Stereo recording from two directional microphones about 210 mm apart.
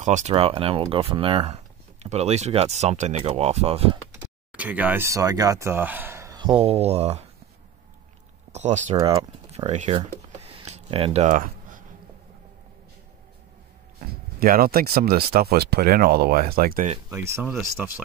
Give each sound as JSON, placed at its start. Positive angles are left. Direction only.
{"t": 0.0, "sound": "speech", "side_deg": -35}
{"t": 4.5, "sound": "speech", "side_deg": -5}
{"t": 8.5, "sound": "speech", "side_deg": -35}
{"t": 8.9, "sound": "speech", "side_deg": -15}
{"t": 9.5, "sound": "a sound", "side_deg": -30}
{"t": 13.9, "sound": "speech", "side_deg": -45}
{"t": 17.1, "sound": "speech", "side_deg": -10}